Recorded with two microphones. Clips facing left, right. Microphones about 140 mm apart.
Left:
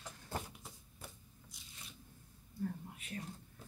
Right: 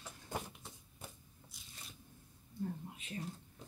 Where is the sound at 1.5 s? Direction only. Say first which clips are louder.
Even; centre (ahead or behind).